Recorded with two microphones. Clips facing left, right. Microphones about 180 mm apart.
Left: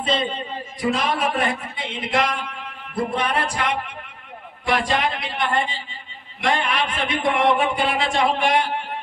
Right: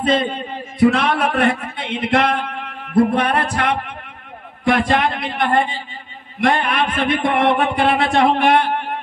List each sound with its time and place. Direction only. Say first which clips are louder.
0.0 s a man's voice: right 5 dB; 55° right (ahead or behind)